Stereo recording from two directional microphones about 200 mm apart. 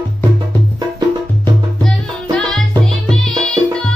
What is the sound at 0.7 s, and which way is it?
Music, 20° right (ahead or behind).